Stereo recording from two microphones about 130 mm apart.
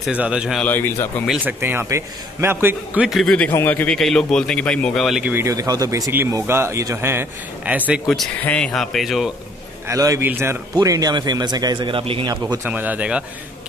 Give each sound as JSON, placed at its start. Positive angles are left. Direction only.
{"t": 0.0, "sound": "a man's voice", "side_deg": -10}
{"t": 0.6, "sound": "a man's voice", "side_deg": 15}
{"t": 1.4, "sound": "a man's voice", "side_deg": -15}
{"t": 3.1, "sound": "a man's voice", "side_deg": 0}
{"t": 5.2, "sound": "speech", "side_deg": -20}
{"t": 8.4, "sound": "a man's voice", "side_deg": 10}
{"t": 9.8, "sound": "a man's voice", "side_deg": -25}
{"t": 12.6, "sound": "a man's voice", "side_deg": -15}